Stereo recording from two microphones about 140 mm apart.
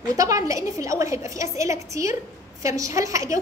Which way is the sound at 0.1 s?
25° right (ahead or behind).